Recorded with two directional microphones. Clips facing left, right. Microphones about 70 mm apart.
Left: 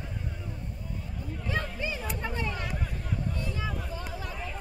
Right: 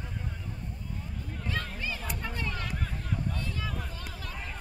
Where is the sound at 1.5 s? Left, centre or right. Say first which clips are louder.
Left 3 dB; centre.